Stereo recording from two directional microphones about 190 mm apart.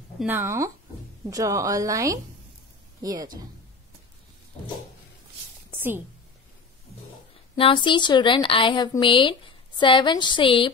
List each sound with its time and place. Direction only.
0.2 s a woman's voice: 10° right (ahead or behind)
5.7 s a sound: 10° right (ahead or behind)
7.5 s a woman's voice: 25° left (ahead or behind)